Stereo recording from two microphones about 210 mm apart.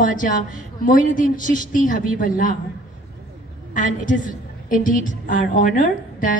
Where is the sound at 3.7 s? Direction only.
40° left (ahead or behind).